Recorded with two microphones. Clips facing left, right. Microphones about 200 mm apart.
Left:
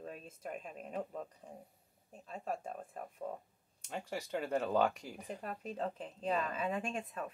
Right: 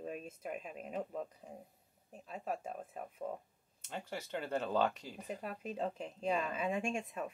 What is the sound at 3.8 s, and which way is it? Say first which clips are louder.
Speech: left 2 dB; 10° left (ahead or behind).